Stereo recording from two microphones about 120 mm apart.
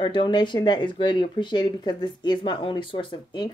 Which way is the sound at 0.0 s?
45° left (ahead or behind).